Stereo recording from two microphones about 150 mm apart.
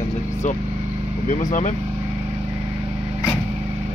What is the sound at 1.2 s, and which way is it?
Speech, 55° left (ahead or behind).